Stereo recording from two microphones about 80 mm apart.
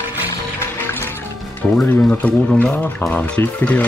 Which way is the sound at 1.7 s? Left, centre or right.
Centre.